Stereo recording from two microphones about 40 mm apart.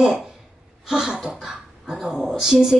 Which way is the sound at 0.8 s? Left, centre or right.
Centre.